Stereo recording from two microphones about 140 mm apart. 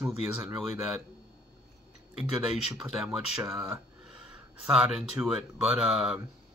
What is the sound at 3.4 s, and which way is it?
Speech, 15° right (ahead or behind).